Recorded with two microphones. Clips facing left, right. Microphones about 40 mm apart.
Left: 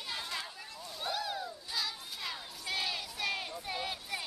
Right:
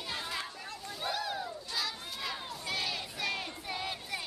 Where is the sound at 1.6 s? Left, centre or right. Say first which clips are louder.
Right 1 dB; centre.